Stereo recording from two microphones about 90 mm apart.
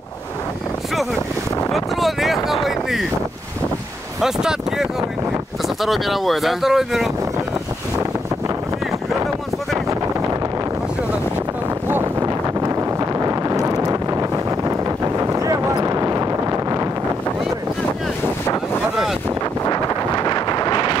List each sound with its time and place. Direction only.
1.7 s a sound: centre (ahead or behind)
4.2 s speech: 5° right (ahead or behind)
12.2 s wind noise: 40° right (ahead or behind)
19.6 s wind noise: 45° left (ahead or behind)